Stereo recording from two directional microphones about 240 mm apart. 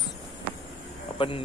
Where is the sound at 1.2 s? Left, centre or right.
Left.